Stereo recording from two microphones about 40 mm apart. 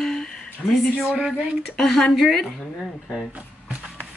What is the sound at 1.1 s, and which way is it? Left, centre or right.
Speech, right.